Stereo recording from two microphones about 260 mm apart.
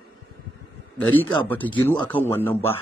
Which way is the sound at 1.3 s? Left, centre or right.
Centre.